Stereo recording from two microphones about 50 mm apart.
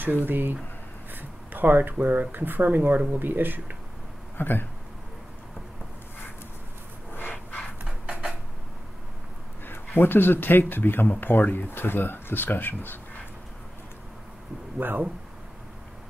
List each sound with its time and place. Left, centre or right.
0.0 s speech: right
4.4 s speech: left
7.2 s a sound: left
7.8 s a sound: right
9.7 s speech: left
14.8 s speech: right